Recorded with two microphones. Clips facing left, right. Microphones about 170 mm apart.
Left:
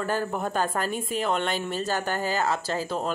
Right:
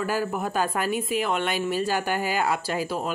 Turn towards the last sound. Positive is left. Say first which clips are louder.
# right 1 dB
turn(degrees=-10)  # may be behind; listen again after turning